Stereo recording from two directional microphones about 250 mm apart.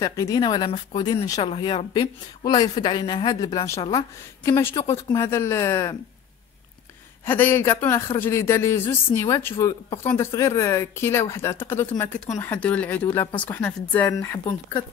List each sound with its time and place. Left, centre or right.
0.0 s speech: centre
7.2 s speech: centre